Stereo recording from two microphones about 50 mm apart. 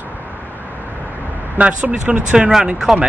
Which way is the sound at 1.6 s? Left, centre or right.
Right.